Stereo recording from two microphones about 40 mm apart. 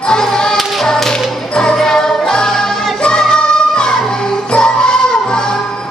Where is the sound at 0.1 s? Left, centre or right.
Centre.